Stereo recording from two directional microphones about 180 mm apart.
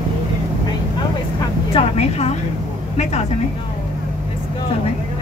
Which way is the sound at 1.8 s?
35° left (ahead or behind).